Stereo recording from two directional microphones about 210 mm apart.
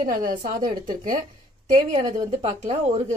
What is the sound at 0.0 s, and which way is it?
A woman's voice, 40° right (ahead or behind).